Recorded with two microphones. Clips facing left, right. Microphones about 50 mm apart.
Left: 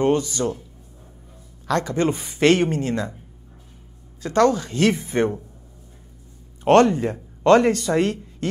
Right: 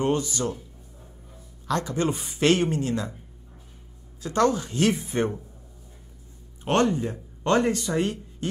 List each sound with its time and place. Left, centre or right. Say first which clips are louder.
0.3 s speech: left 4 dB; left
1.7 s speech: left 4 dB; left
4.2 s speech: left 4 dB; left
6.6 s speech: left 8 dB; left